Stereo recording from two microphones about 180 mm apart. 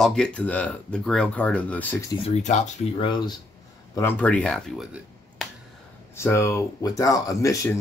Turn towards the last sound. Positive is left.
turn(degrees=20)  # may be behind; listen again after turning